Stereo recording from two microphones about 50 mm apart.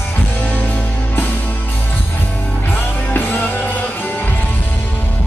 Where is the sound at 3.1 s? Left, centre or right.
Left.